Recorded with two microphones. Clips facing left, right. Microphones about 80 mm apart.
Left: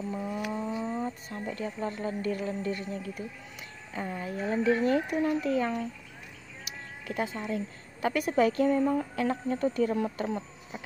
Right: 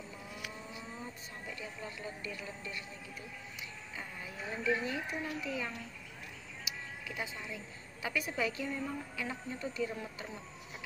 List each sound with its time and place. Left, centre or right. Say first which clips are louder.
0.1 s vehicle: left 13 dB; left
0.8 s vehicle: left 12 dB; left
1.4 s speech: left 11 dB; left